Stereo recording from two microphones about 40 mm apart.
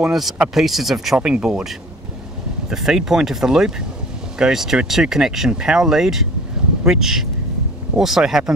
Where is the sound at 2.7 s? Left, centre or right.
Centre.